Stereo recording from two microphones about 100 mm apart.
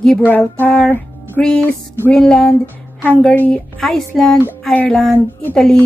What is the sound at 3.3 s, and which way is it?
Speech, 15° left (ahead or behind).